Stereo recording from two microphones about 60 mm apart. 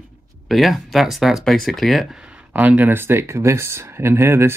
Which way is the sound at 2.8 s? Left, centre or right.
Right.